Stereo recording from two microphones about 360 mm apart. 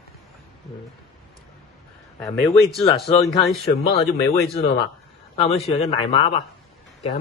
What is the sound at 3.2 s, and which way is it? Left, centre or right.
Speech, centre.